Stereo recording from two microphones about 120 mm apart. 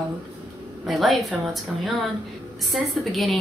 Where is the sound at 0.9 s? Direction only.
Centre (ahead or behind).